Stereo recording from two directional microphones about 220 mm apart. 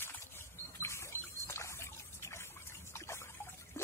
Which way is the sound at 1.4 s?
10° left (ahead or behind).